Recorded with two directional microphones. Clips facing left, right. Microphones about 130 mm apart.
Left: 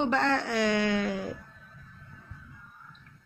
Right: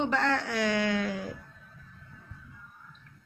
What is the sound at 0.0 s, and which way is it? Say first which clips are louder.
Speech: left 2 dB; 25° left (ahead or behind).